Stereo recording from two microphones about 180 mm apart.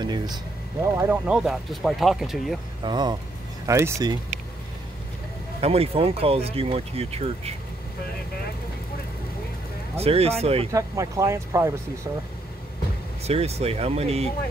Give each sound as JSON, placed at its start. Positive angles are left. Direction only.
{"t": 0.0, "sound": "a sound", "side_deg": -25}
{"t": 0.9, "sound": "speech", "side_deg": -10}
{"t": 2.8, "sound": "speech", "side_deg": -25}
{"t": 5.6, "sound": "speech", "side_deg": -35}
{"t": 9.9, "sound": "speech", "side_deg": -35}
{"t": 10.7, "sound": "speech", "side_deg": -15}
{"t": 13.2, "sound": "speech", "side_deg": -35}